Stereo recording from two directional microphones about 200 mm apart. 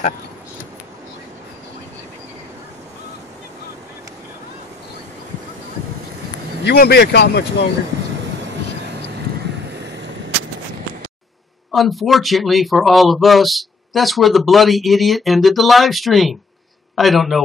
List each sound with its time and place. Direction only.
6.6 s speech: 55° left (ahead or behind)
11.7 s a man's voice: centre (ahead or behind)